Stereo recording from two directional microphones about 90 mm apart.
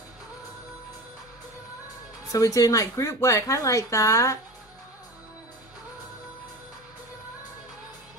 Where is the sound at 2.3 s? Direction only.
40° left (ahead or behind).